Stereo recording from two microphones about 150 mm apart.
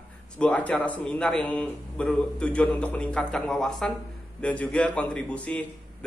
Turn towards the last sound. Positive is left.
turn(degrees=10)  # may be behind; listen again after turning